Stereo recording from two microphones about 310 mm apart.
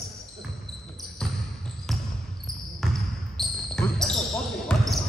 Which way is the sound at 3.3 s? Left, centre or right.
Centre.